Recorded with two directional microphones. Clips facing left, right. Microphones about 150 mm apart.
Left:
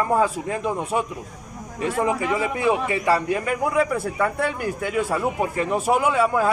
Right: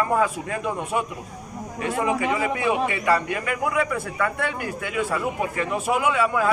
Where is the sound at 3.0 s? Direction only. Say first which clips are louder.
Left 2 dB; 35° left (ahead or behind).